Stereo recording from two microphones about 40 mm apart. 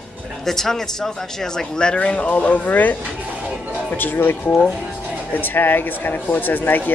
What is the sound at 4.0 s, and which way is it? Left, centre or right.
Speech, left.